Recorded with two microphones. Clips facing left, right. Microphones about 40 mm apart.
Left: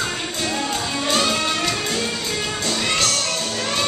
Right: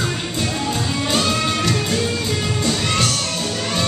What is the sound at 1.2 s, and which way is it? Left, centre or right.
Music, centre.